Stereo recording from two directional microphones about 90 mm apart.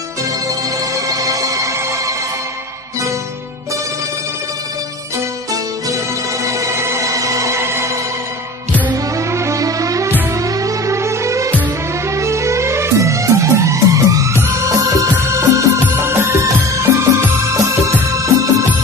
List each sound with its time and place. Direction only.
0.9 s music: 40° right (ahead or behind)
6.4 s music: 35° right (ahead or behind)